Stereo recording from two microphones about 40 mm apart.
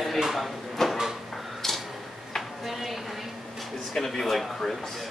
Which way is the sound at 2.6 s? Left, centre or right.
Centre.